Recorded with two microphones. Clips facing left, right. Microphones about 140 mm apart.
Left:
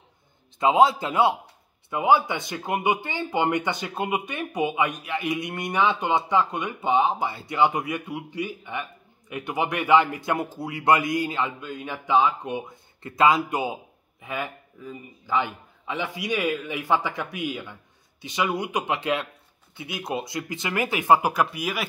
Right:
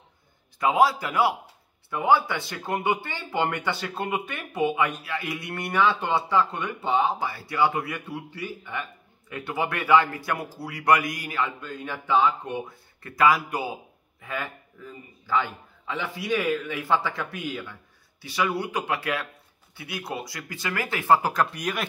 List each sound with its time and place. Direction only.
0.6 s speech: 20° left (ahead or behind); by 21.8 s 5° left (ahead or behind)